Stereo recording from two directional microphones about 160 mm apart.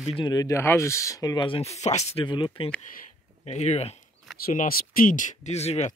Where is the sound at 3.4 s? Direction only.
45° left (ahead or behind).